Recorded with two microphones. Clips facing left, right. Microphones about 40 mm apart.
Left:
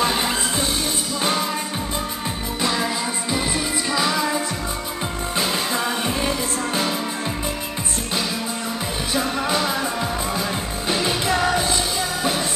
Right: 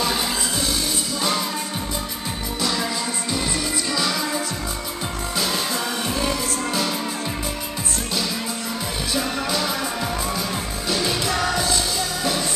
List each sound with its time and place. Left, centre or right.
0.0 s music: left
2.6 s music: left
3.9 s music: left
5.3 s music: left
9.1 s music: left
10.9 s music: left